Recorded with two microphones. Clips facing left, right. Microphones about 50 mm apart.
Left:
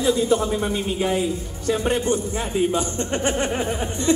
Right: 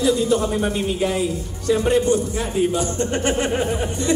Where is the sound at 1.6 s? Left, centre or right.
Left.